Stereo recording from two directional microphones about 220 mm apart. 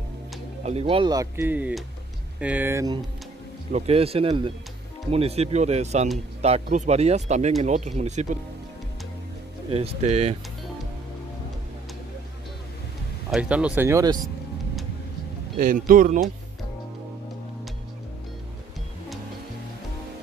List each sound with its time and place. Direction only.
0.7 s speech: 25° right (ahead or behind)
3.7 s speech: 25° right (ahead or behind)
9.7 s speech: 30° right (ahead or behind)
13.3 s speech: 5° right (ahead or behind)
15.5 s speech: 40° right (ahead or behind)